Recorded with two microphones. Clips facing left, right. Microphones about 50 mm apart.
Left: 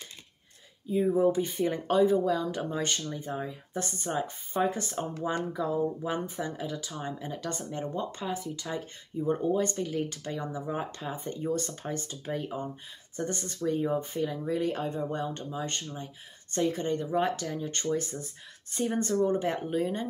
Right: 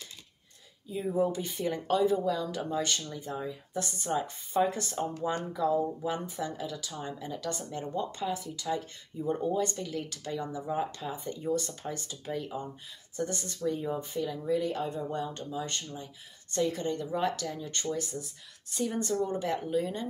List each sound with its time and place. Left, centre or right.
0.8 s speech: centre
3.8 s speech: left